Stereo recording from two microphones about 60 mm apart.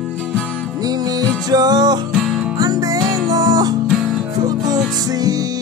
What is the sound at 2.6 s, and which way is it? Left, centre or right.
Music, right.